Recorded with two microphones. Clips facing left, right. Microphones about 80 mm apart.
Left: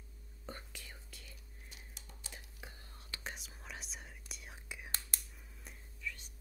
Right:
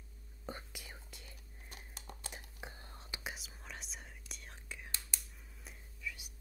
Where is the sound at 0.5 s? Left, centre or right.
Centre.